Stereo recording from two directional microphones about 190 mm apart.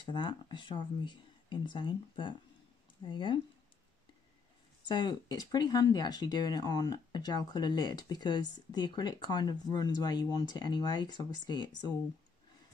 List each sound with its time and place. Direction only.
0.0 s speech: 25° left (ahead or behind)
4.8 s speech: 25° left (ahead or behind)